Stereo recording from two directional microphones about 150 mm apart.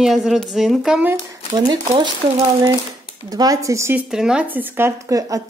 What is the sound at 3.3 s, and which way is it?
Speech, 25° right (ahead or behind).